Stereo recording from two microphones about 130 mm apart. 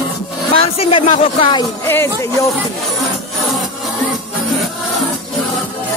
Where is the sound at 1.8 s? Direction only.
20° left (ahead or behind).